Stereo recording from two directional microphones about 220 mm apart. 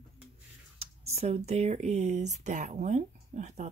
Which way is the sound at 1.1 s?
30° right (ahead or behind).